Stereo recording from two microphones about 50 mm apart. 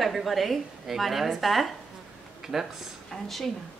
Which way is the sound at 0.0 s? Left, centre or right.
Centre.